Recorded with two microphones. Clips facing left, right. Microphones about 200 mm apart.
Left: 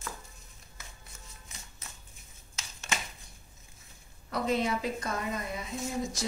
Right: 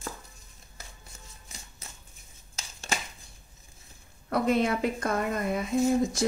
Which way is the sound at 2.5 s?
35° right (ahead or behind).